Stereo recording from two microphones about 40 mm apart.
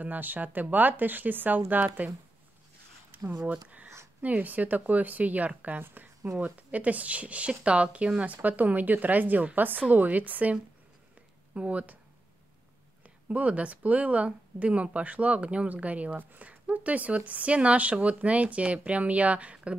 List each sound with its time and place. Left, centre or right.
0.0 s speech: right
3.1 s a sound: right
3.4 s speech: right
8.3 s speech: right
11.5 s speech: right
13.0 s speech: right